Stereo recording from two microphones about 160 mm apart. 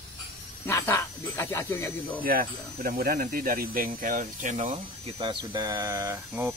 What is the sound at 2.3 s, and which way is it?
Speech, 65° right (ahead or behind).